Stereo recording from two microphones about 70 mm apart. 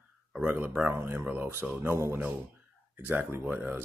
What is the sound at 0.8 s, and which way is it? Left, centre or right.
Speech, right.